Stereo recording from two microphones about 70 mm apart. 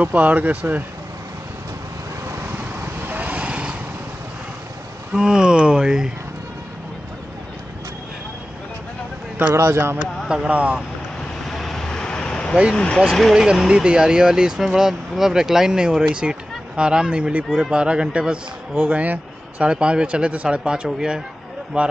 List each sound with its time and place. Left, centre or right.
0.0 s speech: right
3.1 s vehicle: right
5.1 s speech: centre
9.5 s speech: right
10.2 s speech: centre
10.5 s speech: centre
11.4 s vehicle: centre
12.7 s speech: centre
13.3 s speech: centre